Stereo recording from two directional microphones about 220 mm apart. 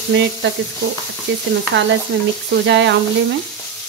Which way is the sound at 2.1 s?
50° right (ahead or behind).